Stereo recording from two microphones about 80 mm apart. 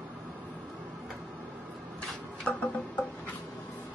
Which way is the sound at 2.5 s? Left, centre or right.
Centre.